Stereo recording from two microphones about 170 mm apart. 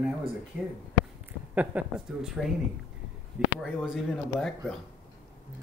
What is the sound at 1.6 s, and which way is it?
Speech, 5° right (ahead or behind).